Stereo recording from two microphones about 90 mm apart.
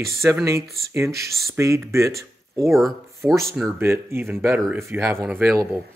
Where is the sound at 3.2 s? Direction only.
30° right (ahead or behind).